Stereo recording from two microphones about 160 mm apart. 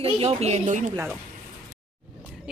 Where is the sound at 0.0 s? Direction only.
35° right (ahead or behind).